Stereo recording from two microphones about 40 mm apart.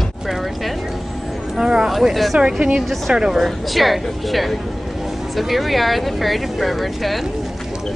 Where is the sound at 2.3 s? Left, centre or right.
Right.